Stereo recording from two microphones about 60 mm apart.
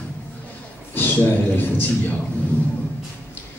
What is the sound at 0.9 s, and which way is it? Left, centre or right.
Speech, left.